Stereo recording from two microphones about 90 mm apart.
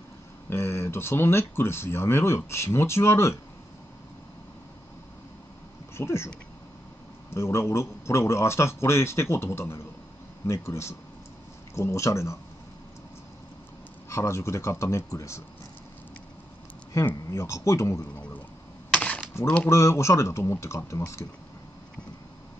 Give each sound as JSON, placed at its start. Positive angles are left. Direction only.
{"t": 0.5, "sound": "speech", "side_deg": 30}
{"t": 5.9, "sound": "speech", "side_deg": 30}
{"t": 7.3, "sound": "a man's voice", "side_deg": 30}
{"t": 14.0, "sound": "a man's voice", "side_deg": 30}
{"t": 17.0, "sound": "a man's voice", "side_deg": 30}
{"t": 18.9, "sound": "a sound", "side_deg": 10}
{"t": 19.4, "sound": "speech", "side_deg": 15}
{"t": 19.7, "sound": "a man's voice", "side_deg": 35}